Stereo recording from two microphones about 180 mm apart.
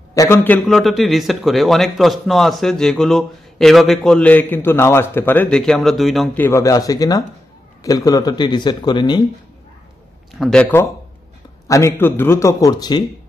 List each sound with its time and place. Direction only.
0.1 s a man's voice: 15° left (ahead or behind); by 6.3 s centre (ahead or behind)
6.3 s speech: 15° left (ahead or behind)
10.4 s a man's voice: 5° left (ahead or behind); by 13.0 s 20° left (ahead or behind)